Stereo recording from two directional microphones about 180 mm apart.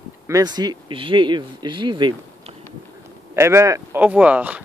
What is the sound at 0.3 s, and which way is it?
Speech, 20° right (ahead or behind).